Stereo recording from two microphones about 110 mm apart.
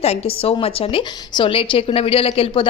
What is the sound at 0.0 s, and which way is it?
A woman's voice, 70° left (ahead or behind).